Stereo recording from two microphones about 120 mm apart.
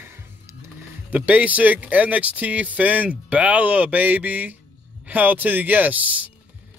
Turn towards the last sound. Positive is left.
turn(degrees=-15)  # may be behind; listen again after turning